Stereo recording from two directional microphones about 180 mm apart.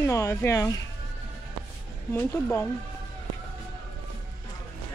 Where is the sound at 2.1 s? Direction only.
10° left (ahead or behind).